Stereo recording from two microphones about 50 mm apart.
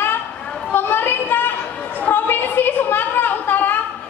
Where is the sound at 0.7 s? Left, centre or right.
Left.